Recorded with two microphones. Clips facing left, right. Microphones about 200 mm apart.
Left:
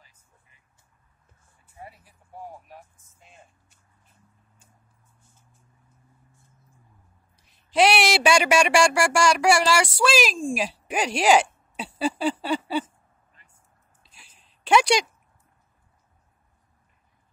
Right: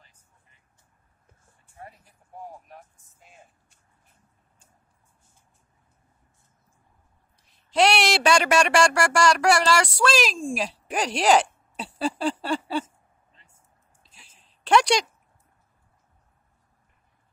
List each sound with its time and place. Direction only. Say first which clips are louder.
1.8 s vehicle: left 1 dB; 5° left (ahead or behind)
2.7 s speech: left 1 dB; centre (ahead or behind)
7.7 s a woman's voice: left 1 dB; 5° left (ahead or behind)
12.8 s a sound: even; 25° right (ahead or behind)
14.6 s speech: even; 5° left (ahead or behind)